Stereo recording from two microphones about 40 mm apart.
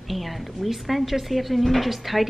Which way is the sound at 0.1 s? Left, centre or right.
Centre.